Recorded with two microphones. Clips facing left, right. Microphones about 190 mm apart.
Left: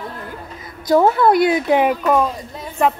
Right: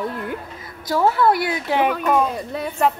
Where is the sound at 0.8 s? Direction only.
20° left (ahead or behind).